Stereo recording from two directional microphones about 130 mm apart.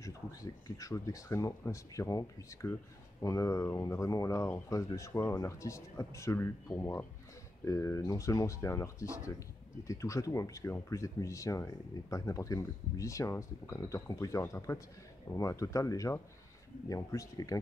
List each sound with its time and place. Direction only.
0.0 s speech: 25° left (ahead or behind)